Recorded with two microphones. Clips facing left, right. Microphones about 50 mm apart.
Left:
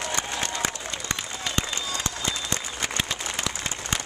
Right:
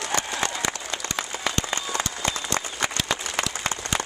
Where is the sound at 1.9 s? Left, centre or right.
Right.